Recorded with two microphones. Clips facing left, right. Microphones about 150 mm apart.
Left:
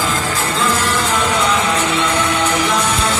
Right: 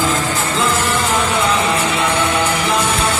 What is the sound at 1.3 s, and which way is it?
Music, 25° right (ahead or behind).